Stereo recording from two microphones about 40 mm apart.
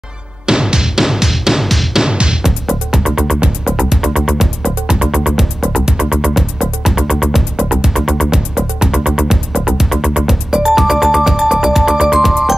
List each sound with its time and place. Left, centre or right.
0.5 s music: centre
2.0 s music: centre
2.4 s music: centre
5.9 s music: centre
7.5 s music: centre
7.9 s music: centre
8.3 s music: centre